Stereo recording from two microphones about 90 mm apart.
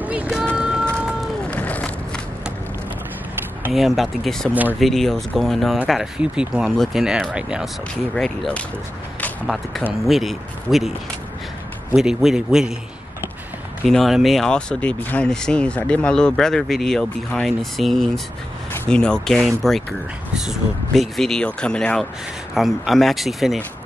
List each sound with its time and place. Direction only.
0.0 s a sound: 15° right (ahead or behind)
0.6 s music: 10° right (ahead or behind)
1.4 s a sound: 15° left (ahead or behind)
3.7 s speech: centre (ahead or behind)
7.9 s speech: 5° left (ahead or behind)
10.0 s speech: centre (ahead or behind)
11.9 s speech: 5° right (ahead or behind)
13.8 s speech: centre (ahead or behind)
22.5 s speech: centre (ahead or behind)